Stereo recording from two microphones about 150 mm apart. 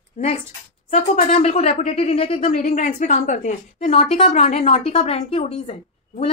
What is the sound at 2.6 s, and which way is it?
A woman's voice, 55° left (ahead or behind).